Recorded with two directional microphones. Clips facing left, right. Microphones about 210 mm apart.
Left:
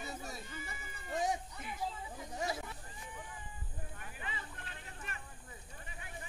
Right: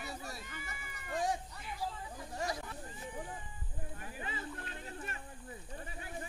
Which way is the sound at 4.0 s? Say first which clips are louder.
Right 5 dB; 35° right (ahead or behind).